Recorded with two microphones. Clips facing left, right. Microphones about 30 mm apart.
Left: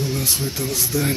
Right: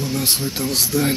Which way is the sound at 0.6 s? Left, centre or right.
Right.